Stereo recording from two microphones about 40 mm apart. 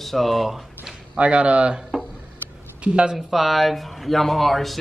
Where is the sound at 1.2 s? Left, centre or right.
Right.